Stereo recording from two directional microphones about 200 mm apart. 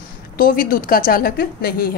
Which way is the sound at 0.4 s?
45° left (ahead or behind).